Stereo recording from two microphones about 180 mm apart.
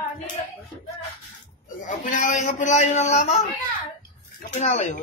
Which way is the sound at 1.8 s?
45° left (ahead or behind).